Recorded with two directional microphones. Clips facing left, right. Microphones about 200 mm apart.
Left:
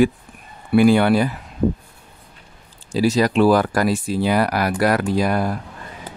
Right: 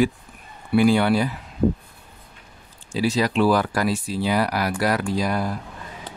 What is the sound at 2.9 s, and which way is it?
Speech, 45° left (ahead or behind).